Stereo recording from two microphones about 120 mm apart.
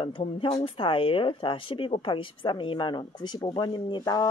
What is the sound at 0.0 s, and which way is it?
Speech, 45° left (ahead or behind).